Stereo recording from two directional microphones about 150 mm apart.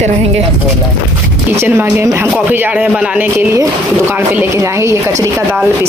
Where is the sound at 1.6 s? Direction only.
15° right (ahead or behind).